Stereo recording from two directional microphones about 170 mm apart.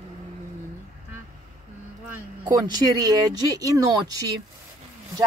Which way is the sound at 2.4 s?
20° right (ahead or behind).